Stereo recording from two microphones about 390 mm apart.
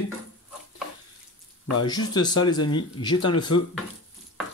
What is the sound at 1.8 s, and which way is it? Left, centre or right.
Speech, centre.